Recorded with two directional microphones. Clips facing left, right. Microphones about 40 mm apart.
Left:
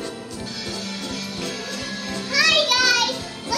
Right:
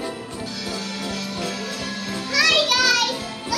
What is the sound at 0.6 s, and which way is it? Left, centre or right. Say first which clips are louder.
Music: right 2 dB; centre.